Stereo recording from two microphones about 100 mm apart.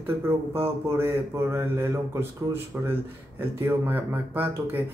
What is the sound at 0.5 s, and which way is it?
A man's voice, 25° right (ahead or behind).